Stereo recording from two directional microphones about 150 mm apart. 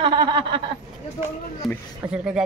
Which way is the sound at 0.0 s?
30° right (ahead or behind).